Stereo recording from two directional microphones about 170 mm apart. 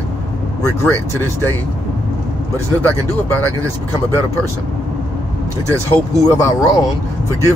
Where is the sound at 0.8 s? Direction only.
15° left (ahead or behind).